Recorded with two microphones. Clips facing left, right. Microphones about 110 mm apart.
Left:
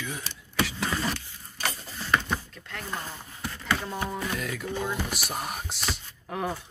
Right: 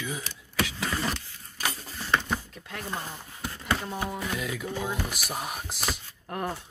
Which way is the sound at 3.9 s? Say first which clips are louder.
Left 1 dB; centre (ahead or behind).